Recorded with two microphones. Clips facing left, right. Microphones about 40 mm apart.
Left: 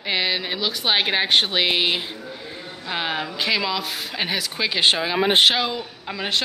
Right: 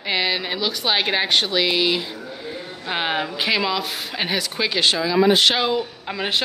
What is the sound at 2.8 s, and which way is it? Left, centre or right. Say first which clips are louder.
Speech: right 2 dB; centre.